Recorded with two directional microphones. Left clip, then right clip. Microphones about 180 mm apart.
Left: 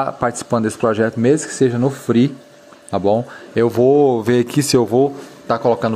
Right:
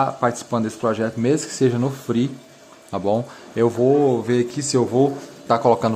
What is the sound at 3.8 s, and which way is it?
Speech, 45° left (ahead or behind).